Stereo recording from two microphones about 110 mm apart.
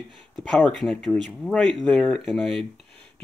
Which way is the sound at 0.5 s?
5° left (ahead or behind).